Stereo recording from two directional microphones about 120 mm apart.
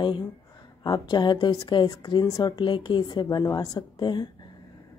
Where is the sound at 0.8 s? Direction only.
35° left (ahead or behind).